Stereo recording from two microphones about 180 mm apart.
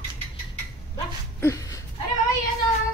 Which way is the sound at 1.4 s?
20° left (ahead or behind).